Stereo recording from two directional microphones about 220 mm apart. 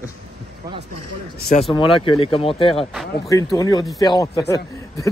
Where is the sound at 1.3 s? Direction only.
45° left (ahead or behind).